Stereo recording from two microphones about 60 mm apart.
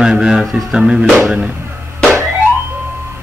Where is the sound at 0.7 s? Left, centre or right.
Centre.